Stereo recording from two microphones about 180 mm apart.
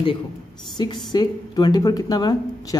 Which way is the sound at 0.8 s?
25° left (ahead or behind).